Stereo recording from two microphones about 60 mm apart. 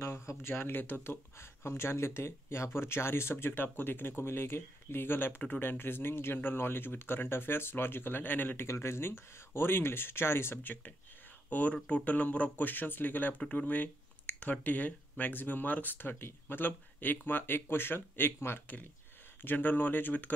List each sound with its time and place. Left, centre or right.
0.3 s speech: left
8.6 s speech: left